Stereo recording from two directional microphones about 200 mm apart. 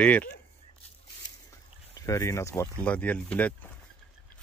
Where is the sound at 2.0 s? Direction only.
15° left (ahead or behind).